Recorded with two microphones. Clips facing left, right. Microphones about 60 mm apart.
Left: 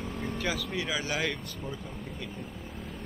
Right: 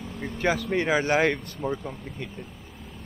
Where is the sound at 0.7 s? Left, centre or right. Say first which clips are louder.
Right 9 dB; right.